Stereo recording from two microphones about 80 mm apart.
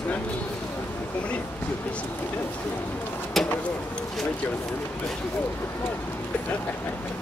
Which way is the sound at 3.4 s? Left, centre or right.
Centre.